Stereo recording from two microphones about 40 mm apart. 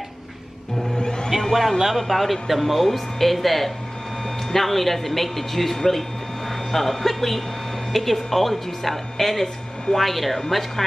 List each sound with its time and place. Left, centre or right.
0.9 s music: centre
1.8 s speech: centre